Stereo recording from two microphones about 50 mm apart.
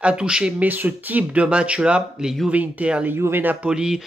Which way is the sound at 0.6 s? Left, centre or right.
Right.